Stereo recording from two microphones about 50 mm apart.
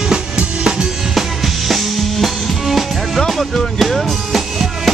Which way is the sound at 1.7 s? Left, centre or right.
Centre.